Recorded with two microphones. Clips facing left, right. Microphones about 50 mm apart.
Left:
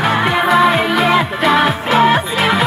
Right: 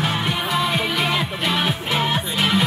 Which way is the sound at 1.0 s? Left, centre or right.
Centre.